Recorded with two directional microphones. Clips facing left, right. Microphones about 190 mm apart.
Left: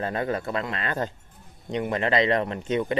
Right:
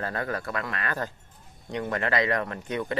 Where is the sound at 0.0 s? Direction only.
20° left (ahead or behind).